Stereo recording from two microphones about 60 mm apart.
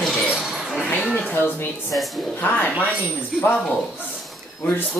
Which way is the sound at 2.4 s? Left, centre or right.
Left.